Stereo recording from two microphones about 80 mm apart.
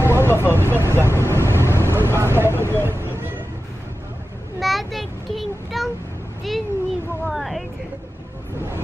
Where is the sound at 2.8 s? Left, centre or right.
Right.